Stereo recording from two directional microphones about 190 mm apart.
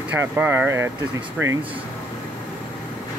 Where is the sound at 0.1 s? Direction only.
10° right (ahead or behind).